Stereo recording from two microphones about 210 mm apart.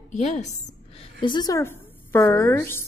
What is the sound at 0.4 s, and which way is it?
Speech, 35° left (ahead or behind).